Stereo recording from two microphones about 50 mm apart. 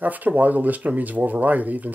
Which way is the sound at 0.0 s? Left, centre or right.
Right.